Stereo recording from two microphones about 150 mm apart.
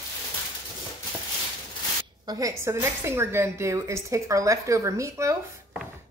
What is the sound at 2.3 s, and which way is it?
A woman's voice, 25° right (ahead or behind).